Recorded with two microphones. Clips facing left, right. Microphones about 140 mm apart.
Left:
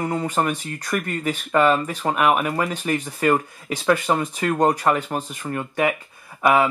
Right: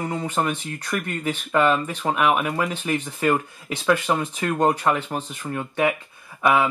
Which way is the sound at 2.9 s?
10° left (ahead or behind).